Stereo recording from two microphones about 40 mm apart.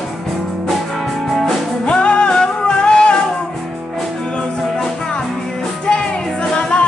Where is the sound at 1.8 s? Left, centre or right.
Left.